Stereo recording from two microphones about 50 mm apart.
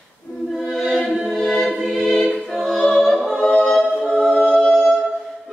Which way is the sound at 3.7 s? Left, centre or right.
Centre.